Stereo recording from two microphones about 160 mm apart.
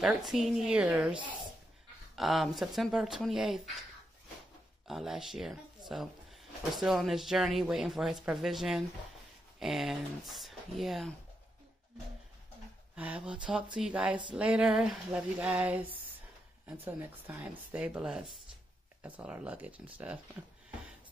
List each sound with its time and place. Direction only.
0.0 s speech: centre (ahead or behind)
2.1 s speech: centre (ahead or behind)
4.8 s speech: centre (ahead or behind)
5.8 s a sound: 25° right (ahead or behind)
6.7 s speech: centre (ahead or behind)
12.9 s speech: 10° right (ahead or behind)